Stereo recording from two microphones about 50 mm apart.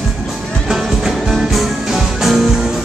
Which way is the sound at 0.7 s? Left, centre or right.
Centre.